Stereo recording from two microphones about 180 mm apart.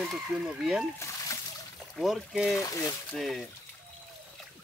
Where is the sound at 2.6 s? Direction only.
20° left (ahead or behind).